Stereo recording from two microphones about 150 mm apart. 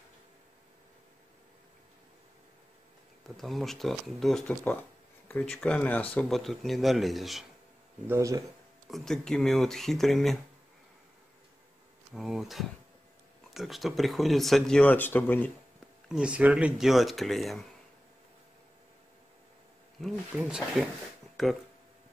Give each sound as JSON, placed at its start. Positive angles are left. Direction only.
{"t": 3.3, "sound": "speech", "side_deg": 0}
{"t": 8.1, "sound": "speech", "side_deg": -20}
{"t": 8.9, "sound": "speech", "side_deg": 5}
{"t": 12.1, "sound": "speech", "side_deg": 0}
{"t": 16.1, "sound": "speech", "side_deg": -5}
{"t": 20.0, "sound": "speech", "side_deg": 0}